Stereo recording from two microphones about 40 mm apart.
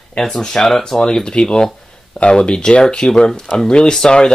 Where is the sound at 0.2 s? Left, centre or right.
Centre.